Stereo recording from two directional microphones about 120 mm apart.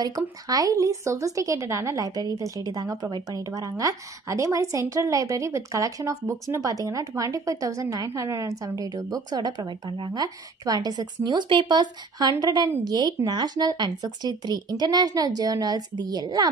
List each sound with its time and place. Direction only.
0.0 s a woman's voice: 30° right (ahead or behind)